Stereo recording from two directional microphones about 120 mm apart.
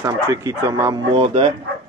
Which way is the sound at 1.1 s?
55° right (ahead or behind).